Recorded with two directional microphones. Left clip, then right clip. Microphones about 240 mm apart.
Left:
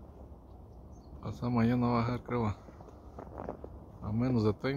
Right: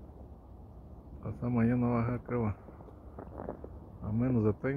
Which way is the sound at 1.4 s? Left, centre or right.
Centre.